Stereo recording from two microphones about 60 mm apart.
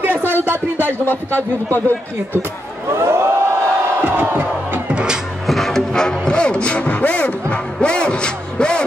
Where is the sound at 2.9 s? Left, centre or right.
Right.